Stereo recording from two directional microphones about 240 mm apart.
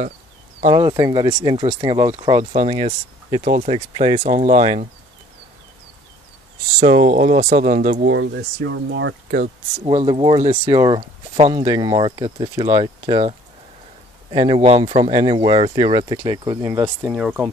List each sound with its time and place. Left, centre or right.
0.6 s speech: right
6.8 s speech: right
8.1 s speech: right
9.8 s speech: right; by 17.5 s centre